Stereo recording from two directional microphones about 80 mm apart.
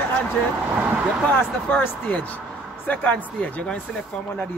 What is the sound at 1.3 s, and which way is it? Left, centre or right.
Speech, left.